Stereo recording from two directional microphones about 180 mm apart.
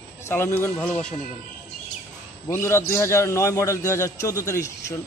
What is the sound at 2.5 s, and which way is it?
A man's voice, 15° left (ahead or behind).